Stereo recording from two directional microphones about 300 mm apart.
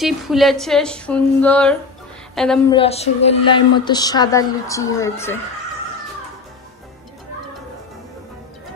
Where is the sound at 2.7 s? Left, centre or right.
Centre.